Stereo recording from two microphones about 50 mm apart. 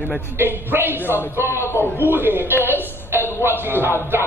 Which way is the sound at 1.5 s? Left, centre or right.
Left.